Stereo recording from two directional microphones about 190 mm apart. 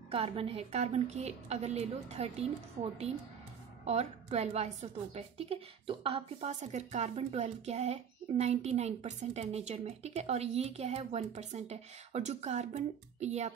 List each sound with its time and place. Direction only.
0.1 s a woman's voice: 30° right (ahead or behind)